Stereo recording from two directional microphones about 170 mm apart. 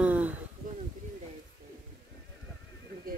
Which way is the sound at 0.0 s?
10° right (ahead or behind).